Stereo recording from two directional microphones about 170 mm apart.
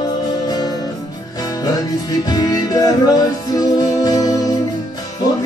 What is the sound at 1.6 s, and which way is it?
Music, 20° left (ahead or behind).